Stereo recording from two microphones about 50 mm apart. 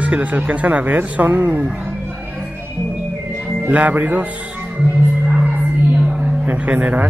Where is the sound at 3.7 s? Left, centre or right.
Right.